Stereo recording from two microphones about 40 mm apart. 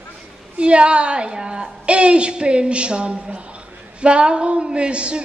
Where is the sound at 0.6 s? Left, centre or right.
Right.